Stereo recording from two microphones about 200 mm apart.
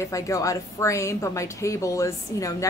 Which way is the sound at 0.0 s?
15° left (ahead or behind).